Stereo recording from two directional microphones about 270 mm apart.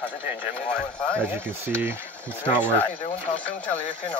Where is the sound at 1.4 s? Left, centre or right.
Centre.